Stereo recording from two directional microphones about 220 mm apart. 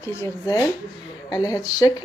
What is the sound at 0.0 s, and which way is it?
A woman's voice, 15° left (ahead or behind).